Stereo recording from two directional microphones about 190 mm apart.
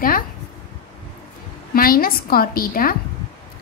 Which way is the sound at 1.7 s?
50° left (ahead or behind).